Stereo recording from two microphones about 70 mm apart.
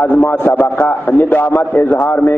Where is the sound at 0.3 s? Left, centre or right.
Left.